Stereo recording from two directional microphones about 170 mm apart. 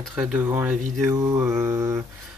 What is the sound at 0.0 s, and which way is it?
Mantra, 5° right (ahead or behind).